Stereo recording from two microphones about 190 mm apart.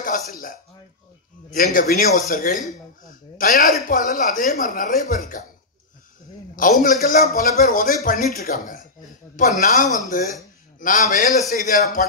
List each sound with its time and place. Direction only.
0.0 s speech: 45° left (ahead or behind)
6.5 s speech: 45° left (ahead or behind)